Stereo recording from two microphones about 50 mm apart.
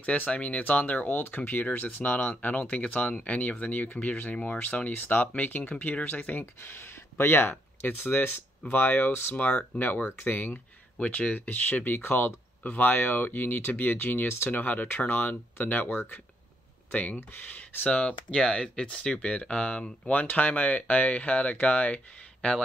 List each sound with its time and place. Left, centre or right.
0.0 s speech: left
6.4 s speech: left
9.3 s speech: left
10.0 s speech: left
11.0 s speech: left
12.0 s speech: left
16.9 s speech: left